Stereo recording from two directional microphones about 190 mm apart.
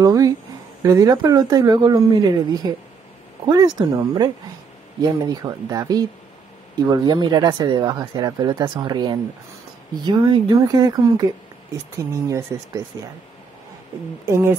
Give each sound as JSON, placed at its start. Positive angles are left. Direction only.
{"t": 0.0, "sound": "speech", "side_deg": -20}
{"t": 14.2, "sound": "speech", "side_deg": -15}